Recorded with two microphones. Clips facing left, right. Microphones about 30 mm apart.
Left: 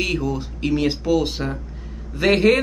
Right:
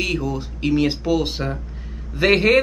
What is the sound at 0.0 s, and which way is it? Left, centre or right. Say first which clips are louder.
A man's voice: even; centre.